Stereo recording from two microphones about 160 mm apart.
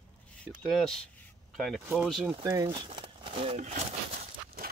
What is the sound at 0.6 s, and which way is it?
Speech, centre (ahead or behind).